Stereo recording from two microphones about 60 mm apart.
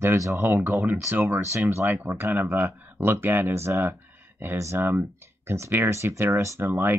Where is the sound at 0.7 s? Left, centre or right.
Right.